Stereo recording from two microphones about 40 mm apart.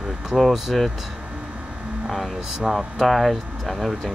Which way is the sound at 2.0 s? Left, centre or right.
Centre.